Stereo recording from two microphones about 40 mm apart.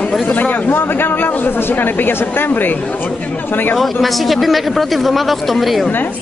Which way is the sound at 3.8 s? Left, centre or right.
Centre.